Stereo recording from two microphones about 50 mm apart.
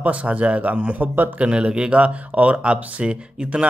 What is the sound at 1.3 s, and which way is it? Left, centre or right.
Speech, right.